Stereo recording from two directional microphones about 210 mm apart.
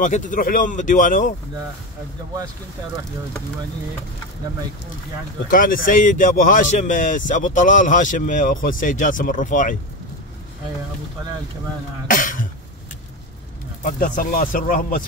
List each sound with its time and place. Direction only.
0.0 s a man's voice: 40° left (ahead or behind)
5.5 s a man's voice: 40° left (ahead or behind)
12.1 s throat clearing: 40° left (ahead or behind)
13.8 s a man's voice: 40° left (ahead or behind)